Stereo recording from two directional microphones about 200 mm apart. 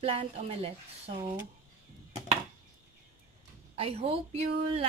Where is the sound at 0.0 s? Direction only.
30° right (ahead or behind).